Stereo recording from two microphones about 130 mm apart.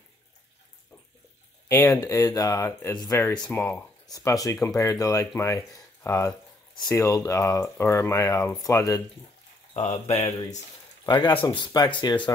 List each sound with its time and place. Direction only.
1.7 s speech: 15° left (ahead or behind)
6.7 s speech: 30° left (ahead or behind)
9.8 s speech: 55° left (ahead or behind)
11.1 s speech: 35° left (ahead or behind)